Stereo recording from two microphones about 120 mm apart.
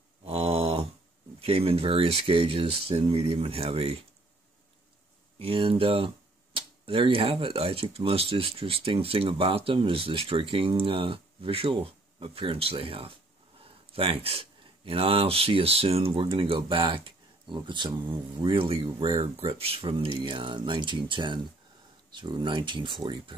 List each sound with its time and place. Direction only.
0.2 s mantra: 55° right (ahead or behind)
1.4 s speech: 50° right (ahead or behind)
5.4 s speech: 50° right (ahead or behind)